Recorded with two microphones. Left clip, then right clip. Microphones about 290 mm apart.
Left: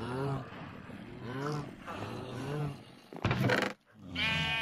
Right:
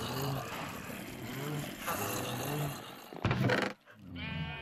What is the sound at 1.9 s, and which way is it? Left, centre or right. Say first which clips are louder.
Vehicle: right 7 dB; right.